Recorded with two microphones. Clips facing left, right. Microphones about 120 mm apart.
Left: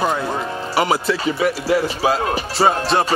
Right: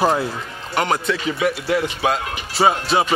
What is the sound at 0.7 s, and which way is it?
Speech, 5° left (ahead or behind).